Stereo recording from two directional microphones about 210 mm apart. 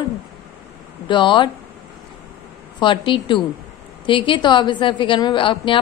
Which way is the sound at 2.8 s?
25° left (ahead or behind).